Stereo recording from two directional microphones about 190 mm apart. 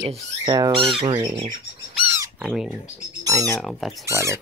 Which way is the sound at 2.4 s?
5° right (ahead or behind).